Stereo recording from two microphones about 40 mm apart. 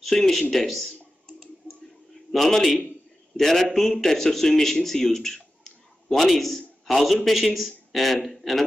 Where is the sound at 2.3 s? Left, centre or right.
Centre.